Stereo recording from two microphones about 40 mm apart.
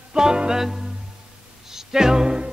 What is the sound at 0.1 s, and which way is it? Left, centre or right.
Music, centre.